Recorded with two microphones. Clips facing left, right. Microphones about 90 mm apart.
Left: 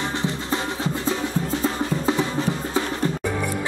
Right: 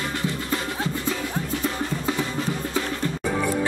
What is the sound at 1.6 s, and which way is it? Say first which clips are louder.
Music: left 3 dB; 25° left (ahead or behind).